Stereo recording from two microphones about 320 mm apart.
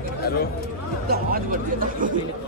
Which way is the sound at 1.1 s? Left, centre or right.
Right.